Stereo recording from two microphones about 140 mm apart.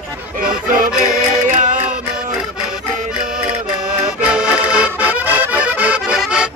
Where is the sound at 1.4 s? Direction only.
65° right (ahead or behind).